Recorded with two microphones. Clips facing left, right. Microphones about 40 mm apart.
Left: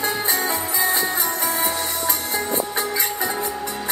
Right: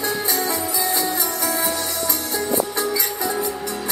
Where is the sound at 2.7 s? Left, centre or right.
Left.